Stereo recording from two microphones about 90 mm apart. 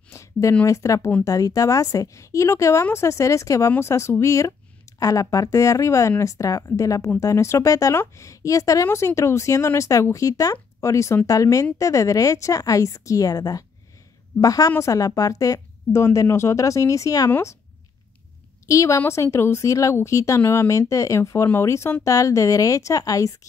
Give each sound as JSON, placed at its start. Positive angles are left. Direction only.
{"t": 0.1, "sound": "a sound", "side_deg": 35}
{"t": 0.7, "sound": "speech", "side_deg": 35}
{"t": 18.7, "sound": "speech", "side_deg": 35}